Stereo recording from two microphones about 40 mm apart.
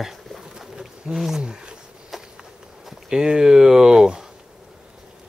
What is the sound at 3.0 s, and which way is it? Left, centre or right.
Speech, centre.